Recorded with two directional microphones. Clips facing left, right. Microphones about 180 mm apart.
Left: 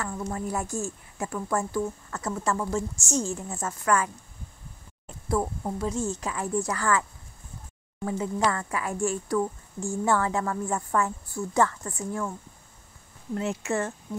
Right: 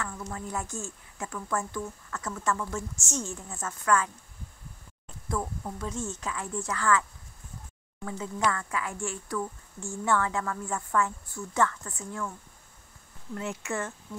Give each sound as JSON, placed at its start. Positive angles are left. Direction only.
{"t": 0.0, "sound": "speech", "side_deg": 30}
{"t": 5.3, "sound": "speech", "side_deg": 35}
{"t": 13.4, "sound": "speech", "side_deg": 25}